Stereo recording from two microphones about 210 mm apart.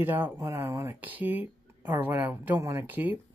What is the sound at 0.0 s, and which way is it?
Speech, 10° right (ahead or behind).